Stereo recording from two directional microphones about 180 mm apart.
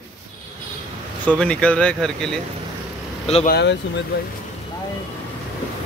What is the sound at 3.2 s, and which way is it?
Speech, 35° left (ahead or behind).